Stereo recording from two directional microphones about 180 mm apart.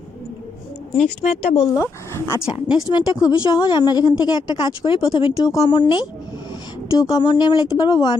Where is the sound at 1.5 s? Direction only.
15° left (ahead or behind).